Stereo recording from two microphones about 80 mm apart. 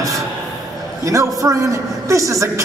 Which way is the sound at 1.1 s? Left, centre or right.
Right.